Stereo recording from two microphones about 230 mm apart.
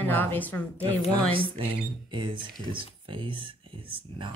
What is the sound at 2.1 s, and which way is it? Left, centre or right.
Speech, right.